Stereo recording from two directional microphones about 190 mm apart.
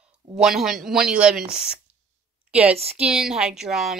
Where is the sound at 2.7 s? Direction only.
30° right (ahead or behind).